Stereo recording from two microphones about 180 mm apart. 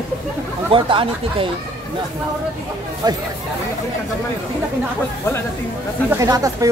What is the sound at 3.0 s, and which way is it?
Speech, 20° right (ahead or behind).